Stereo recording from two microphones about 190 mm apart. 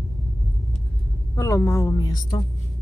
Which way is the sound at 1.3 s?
15° left (ahead or behind).